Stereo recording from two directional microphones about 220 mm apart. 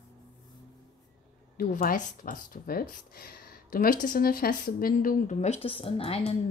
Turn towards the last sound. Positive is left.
turn(degrees=25)  # may be behind; listen again after turning